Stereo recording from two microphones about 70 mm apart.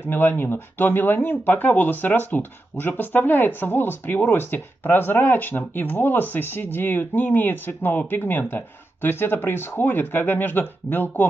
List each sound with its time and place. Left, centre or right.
0.0 s speech: left